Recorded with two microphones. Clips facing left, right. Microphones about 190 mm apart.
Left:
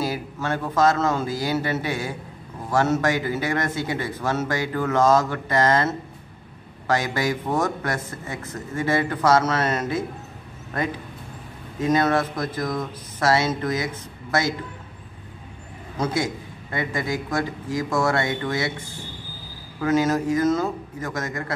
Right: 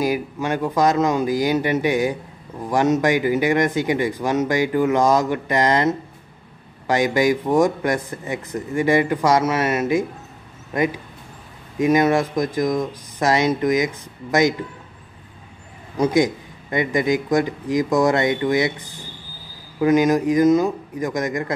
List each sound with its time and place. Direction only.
0.0 s a man's voice: 15° right (ahead or behind)
16.0 s a man's voice: 15° right (ahead or behind)